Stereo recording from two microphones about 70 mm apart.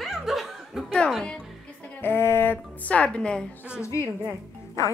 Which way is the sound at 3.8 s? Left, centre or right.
Left.